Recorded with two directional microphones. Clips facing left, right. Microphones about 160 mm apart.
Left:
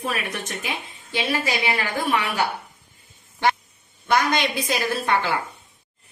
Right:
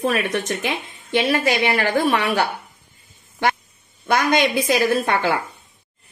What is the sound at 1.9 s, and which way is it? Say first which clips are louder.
Speech: right 5 dB; 65° right (ahead or behind).